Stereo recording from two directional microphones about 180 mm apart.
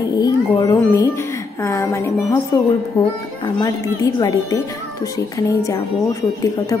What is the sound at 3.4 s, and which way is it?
A woman's voice, 20° left (ahead or behind).